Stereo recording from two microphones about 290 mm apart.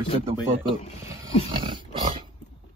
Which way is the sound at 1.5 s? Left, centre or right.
Centre.